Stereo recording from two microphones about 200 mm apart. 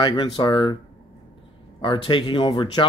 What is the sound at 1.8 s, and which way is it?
Speech, 25° left (ahead or behind).